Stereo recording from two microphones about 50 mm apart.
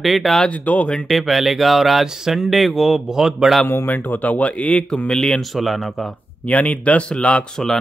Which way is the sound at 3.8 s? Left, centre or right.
Left.